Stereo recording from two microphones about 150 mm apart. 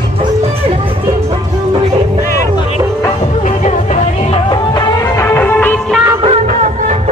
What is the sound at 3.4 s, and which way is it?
Music, 50° left (ahead or behind).